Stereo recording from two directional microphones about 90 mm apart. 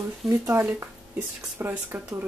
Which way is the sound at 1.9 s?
25° right (ahead or behind).